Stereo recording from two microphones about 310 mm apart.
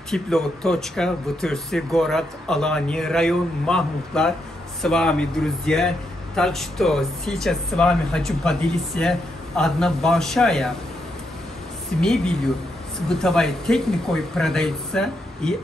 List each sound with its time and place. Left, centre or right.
0.1 s a man's voice: centre
12.0 s a man's voice: centre